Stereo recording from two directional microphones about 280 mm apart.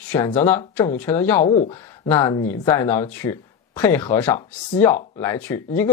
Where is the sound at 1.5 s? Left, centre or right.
Centre.